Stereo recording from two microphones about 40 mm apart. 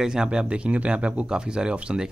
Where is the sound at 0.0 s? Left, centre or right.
Centre.